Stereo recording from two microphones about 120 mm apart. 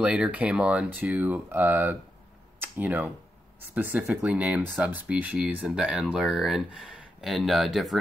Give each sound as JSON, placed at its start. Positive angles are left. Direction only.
{"t": 0.0, "sound": "speech", "side_deg": -10}